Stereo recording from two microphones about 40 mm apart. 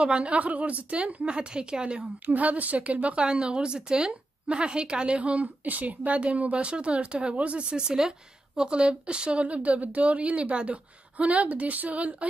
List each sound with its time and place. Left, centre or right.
0.0 s a woman's voice: right
2.2 s speech: right
3.2 s a woman's voice: right
7.7 s a woman's voice: centre; by 12.3 s right